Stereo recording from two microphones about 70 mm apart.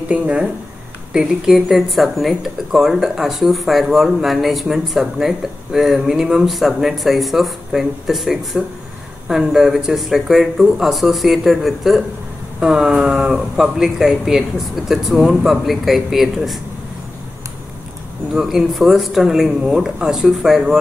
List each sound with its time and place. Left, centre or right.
0.1 s speech: centre
18.3 s speech: centre